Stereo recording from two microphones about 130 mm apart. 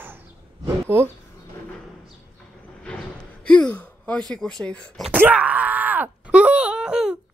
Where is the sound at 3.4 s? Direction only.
10° left (ahead or behind).